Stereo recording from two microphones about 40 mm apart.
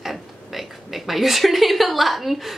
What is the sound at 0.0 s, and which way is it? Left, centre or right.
Speech, centre.